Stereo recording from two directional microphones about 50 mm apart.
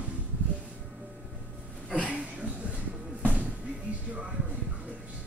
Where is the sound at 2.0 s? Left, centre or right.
Right.